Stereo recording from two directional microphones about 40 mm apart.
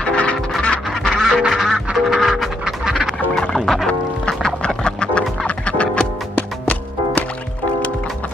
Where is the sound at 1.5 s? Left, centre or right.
Centre.